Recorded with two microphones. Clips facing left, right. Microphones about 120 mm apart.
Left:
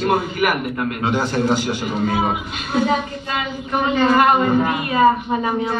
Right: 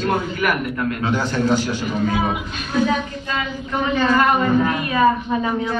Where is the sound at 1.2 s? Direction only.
35° left (ahead or behind).